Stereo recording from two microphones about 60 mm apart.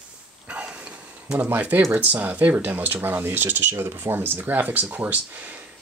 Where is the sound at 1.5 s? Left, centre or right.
Right.